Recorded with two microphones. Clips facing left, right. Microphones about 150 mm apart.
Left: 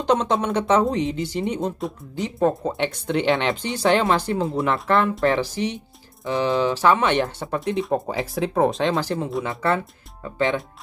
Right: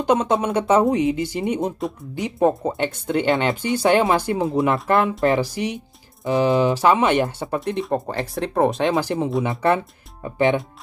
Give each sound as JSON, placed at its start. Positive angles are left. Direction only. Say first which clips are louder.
{"t": 0.0, "sound": "speech", "louder": "right 2 dB", "side_deg": -5}
{"t": 2.8, "sound": "speech", "louder": "even", "side_deg": 0}